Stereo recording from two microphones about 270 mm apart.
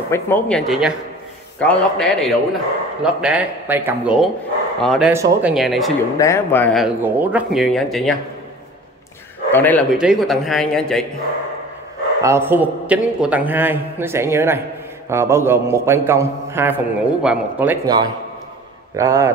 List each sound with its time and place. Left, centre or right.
0.1 s speech: centre
6.1 s speech: centre
9.5 s speech: centre
12.2 s a man's voice: centre